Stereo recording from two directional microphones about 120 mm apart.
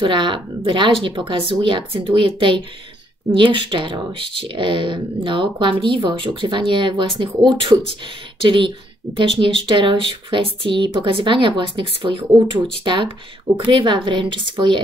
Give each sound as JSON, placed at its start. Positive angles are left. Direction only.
{"t": 0.0, "sound": "speech", "side_deg": -40}